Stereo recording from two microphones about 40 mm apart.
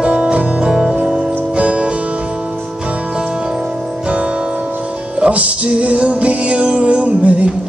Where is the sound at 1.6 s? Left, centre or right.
Right.